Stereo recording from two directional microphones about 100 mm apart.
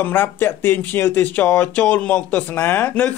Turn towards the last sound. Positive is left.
turn(degrees=15)  # may be behind; listen again after turning